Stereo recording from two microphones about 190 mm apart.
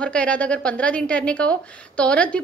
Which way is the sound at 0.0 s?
5° left (ahead or behind).